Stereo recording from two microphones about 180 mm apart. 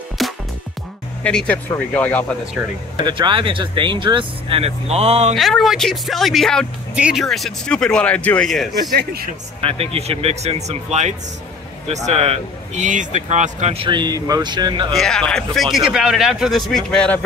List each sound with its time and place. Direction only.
0.2 s music: centre (ahead or behind)
1.2 s speech: 5° left (ahead or behind)
3.0 s speech: 25° right (ahead or behind)
5.3 s speech: centre (ahead or behind)
9.6 s speech: 30° right (ahead or behind)
14.9 s speech: 5° left (ahead or behind)